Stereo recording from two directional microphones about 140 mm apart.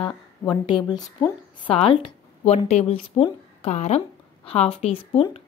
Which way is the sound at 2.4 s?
55° left (ahead or behind).